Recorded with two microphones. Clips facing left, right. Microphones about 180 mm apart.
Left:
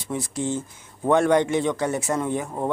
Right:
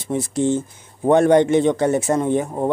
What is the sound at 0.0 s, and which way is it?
A man's voice, 25° right (ahead or behind).